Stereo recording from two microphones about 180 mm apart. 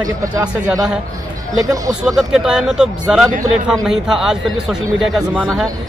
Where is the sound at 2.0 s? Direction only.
Centre (ahead or behind).